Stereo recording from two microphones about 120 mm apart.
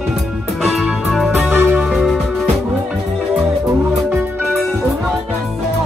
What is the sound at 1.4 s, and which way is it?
Music, 20° right (ahead or behind).